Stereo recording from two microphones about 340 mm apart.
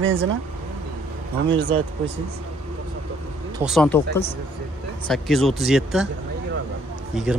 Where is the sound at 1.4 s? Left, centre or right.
Centre.